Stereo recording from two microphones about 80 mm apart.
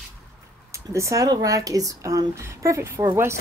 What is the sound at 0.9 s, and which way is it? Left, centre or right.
Speech, right.